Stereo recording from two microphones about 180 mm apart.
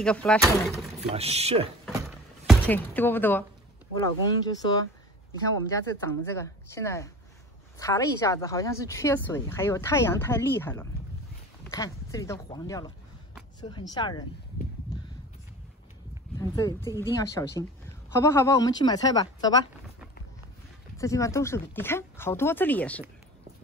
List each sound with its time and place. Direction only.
0.0 s speech: 5° left (ahead or behind)
1.1 s speech: 35° right (ahead or behind)
2.6 s a woman's voice: 10° left (ahead or behind)
4.0 s a woman's voice: 20° left (ahead or behind)
16.3 s a sound: 20° left (ahead or behind)
16.8 s speech: 15° right (ahead or behind)
17.1 s a woman's voice: 15° left (ahead or behind)
21.0 s a woman's voice: 15° left (ahead or behind)